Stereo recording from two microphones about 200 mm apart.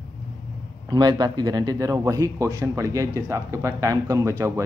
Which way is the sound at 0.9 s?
20° right (ahead or behind).